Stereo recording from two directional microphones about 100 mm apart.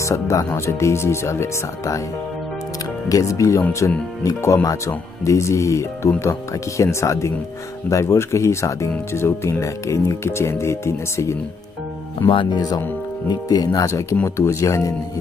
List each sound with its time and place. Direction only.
0.0 s speech: 30° left (ahead or behind)
3.1 s speech: 35° left (ahead or behind)
12.3 s speech: 50° left (ahead or behind)
14.1 s speech: 25° left (ahead or behind)